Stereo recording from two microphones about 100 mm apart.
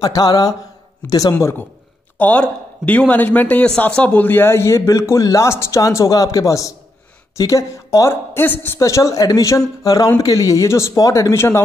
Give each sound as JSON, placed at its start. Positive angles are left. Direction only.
{"t": 0.0, "sound": "speech", "side_deg": 40}
{"t": 1.4, "sound": "speech", "side_deg": 25}